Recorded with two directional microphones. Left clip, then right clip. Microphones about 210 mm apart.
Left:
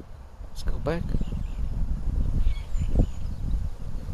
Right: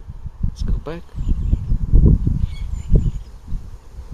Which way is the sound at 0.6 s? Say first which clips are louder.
Left 2 dB; 20° left (ahead or behind).